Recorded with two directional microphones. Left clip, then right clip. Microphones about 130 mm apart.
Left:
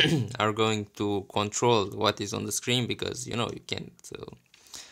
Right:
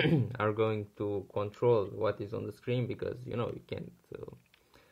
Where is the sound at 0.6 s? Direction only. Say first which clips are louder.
Left 5 dB; 60° left (ahead or behind).